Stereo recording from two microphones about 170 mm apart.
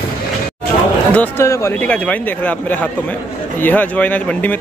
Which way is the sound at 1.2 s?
15° left (ahead or behind).